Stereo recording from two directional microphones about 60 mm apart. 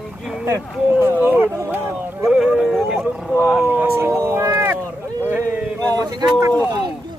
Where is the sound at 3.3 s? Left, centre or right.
Centre.